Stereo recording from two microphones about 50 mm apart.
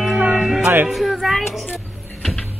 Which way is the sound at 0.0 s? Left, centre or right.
Centre.